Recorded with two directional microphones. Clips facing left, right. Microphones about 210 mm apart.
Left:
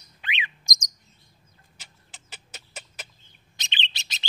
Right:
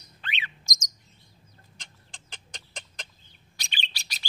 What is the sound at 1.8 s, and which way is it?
Chicken, 5° left (ahead or behind).